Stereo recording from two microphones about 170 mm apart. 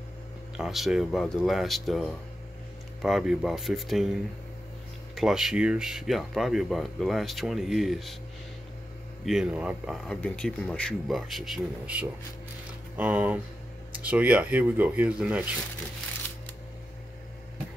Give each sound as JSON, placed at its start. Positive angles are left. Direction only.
{"t": 0.6, "sound": "speech", "side_deg": 0}
{"t": 9.2, "sound": "speech", "side_deg": 0}
{"t": 10.0, "sound": "speech", "side_deg": 5}